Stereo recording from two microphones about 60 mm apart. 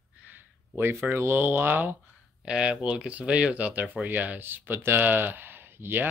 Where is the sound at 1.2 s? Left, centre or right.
Right.